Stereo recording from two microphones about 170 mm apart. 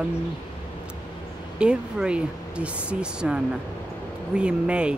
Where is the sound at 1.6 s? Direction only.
5° right (ahead or behind).